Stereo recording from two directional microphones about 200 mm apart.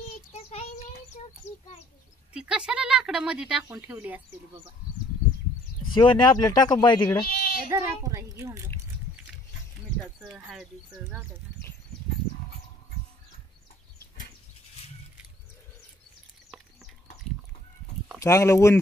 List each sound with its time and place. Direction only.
0.3 s child singing: 30° left (ahead or behind)
2.3 s speech: 5° right (ahead or behind)
5.9 s speech: 20° left (ahead or behind)
7.2 s sheep: 50° left (ahead or behind)
7.7 s speech: 15° right (ahead or behind)
10.2 s speech: centre (ahead or behind)
16.4 s a sound: centre (ahead or behind)
18.2 s speech: 15° left (ahead or behind)